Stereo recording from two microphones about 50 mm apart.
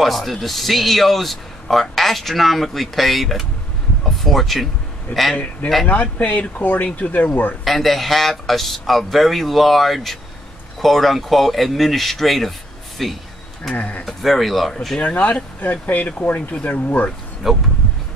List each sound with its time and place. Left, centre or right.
0.0 s speech: centre
5.9 s speech: left
7.6 s speech: centre
13.7 s speech: left
14.0 s speech: centre
15.0 s speech: left
17.4 s speech: centre